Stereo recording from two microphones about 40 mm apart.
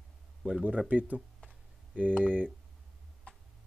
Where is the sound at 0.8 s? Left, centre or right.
Right.